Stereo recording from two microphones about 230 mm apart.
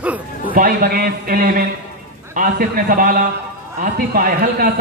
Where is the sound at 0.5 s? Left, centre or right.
Right.